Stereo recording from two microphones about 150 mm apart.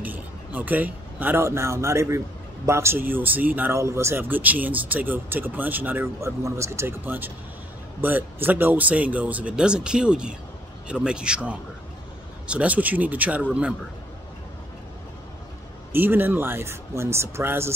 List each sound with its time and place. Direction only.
0.0 s speech: 10° right (ahead or behind)
15.9 s speech: 15° right (ahead or behind)